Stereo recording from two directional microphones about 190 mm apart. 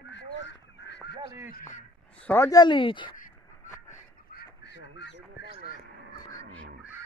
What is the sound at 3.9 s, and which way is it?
Fowl, 60° left (ahead or behind).